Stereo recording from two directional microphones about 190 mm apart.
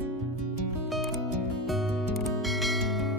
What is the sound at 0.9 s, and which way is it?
Music, centre (ahead or behind).